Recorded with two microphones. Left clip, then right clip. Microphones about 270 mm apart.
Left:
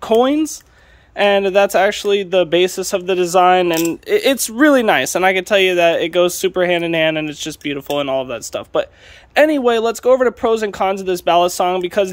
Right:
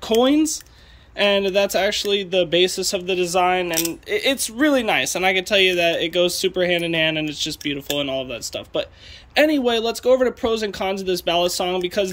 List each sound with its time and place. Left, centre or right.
0.0 s speech: centre